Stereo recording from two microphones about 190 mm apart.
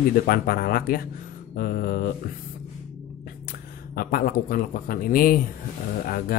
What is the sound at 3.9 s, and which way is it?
Speech, 50° left (ahead or behind).